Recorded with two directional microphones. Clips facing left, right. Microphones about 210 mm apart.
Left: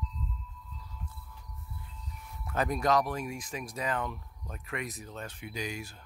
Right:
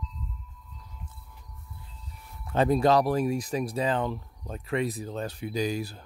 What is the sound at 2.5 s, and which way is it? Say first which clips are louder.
Speech: right 6 dB; 30° right (ahead or behind).